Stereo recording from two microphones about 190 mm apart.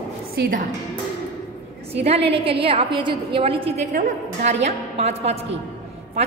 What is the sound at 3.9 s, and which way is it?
A woman's voice, 40° right (ahead or behind).